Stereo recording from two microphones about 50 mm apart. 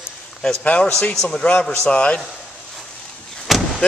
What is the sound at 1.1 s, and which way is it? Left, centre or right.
A man's voice, centre.